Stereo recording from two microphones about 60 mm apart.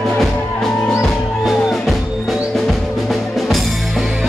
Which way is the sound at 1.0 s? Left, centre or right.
Centre.